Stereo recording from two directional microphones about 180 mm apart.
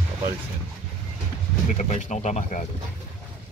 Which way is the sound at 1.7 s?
40° left (ahead or behind).